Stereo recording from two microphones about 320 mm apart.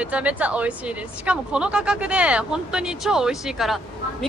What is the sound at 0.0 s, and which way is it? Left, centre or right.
A woman's voice, centre.